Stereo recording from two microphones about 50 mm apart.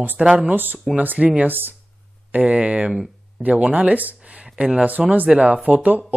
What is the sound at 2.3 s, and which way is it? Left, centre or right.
Speech, right.